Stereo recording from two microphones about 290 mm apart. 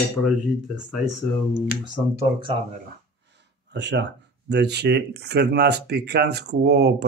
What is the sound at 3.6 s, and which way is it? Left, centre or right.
Speech, right.